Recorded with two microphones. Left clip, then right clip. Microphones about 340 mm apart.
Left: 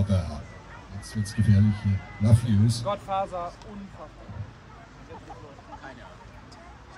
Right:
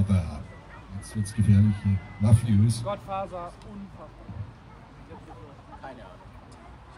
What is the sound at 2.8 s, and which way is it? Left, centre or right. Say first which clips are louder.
Speech: left 4 dB; left.